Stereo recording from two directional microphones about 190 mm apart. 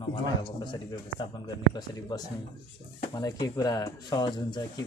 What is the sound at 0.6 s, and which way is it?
Speech, 25° left (ahead or behind).